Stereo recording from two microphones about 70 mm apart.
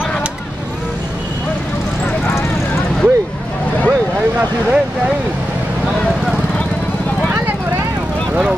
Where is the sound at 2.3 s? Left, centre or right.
Left.